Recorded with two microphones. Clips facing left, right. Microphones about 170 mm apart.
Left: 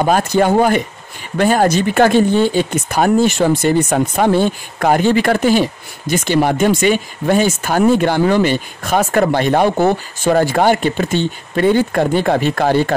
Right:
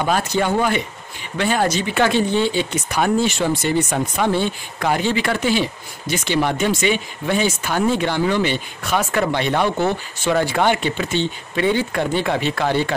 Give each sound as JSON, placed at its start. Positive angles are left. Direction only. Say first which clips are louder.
{"t": 0.0, "sound": "speech", "louder": "left 6 dB", "side_deg": 45}